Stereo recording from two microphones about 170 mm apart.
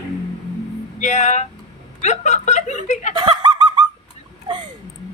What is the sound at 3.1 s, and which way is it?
Laughter, 25° right (ahead or behind).